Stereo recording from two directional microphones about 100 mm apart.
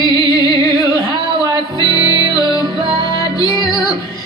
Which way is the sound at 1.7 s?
45° right (ahead or behind).